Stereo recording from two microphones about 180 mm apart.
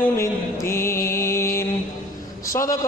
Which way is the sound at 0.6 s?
15° left (ahead or behind).